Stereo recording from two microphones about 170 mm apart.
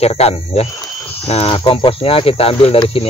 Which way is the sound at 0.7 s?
15° left (ahead or behind).